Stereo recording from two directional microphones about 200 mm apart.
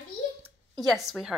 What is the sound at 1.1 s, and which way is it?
Speech, centre (ahead or behind).